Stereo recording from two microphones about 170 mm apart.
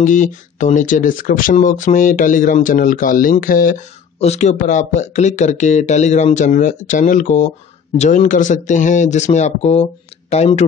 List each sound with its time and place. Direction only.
0.0 s speech: 45° left (ahead or behind)
4.2 s speech: 40° left (ahead or behind)